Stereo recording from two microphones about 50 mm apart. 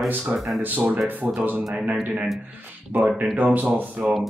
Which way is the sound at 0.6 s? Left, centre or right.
Right.